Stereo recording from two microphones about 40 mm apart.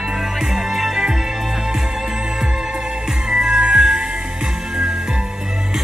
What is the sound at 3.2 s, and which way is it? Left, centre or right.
Music, centre.